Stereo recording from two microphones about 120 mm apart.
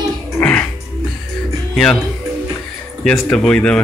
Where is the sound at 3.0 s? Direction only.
5° left (ahead or behind).